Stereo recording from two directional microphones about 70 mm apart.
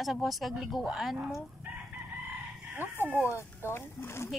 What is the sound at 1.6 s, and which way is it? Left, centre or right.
Chicken, right.